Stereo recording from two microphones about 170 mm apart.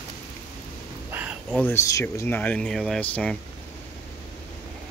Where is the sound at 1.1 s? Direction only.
10° right (ahead or behind).